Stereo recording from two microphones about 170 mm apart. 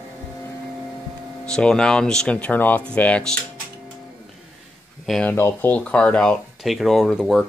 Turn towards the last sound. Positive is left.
turn(degrees=0)  # may be behind; listen again after turning